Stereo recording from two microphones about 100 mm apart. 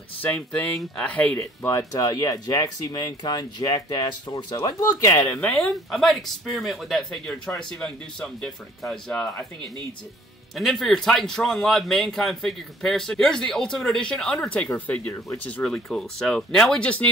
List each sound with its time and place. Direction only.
0.2 s speech: 15° left (ahead or behind)
1.6 s speech: 30° left (ahead or behind)
5.5 s a man's voice: centre (ahead or behind)
10.5 s a man's voice: 5° left (ahead or behind)